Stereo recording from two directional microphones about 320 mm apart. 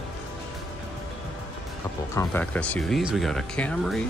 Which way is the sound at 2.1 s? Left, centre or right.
Centre.